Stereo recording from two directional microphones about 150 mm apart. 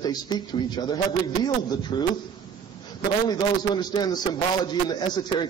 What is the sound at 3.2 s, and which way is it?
A man's voice, 25° left (ahead or behind).